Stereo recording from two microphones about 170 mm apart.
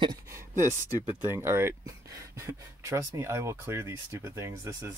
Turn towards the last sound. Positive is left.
turn(degrees=-15)  # may be behind; listen again after turning